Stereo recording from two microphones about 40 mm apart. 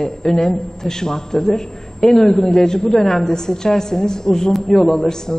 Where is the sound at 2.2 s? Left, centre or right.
Centre.